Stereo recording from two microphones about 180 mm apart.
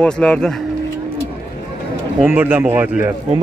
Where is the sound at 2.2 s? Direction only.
10° right (ahead or behind).